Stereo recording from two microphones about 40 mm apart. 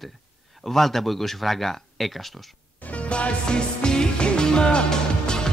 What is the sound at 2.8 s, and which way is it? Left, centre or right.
Music, left.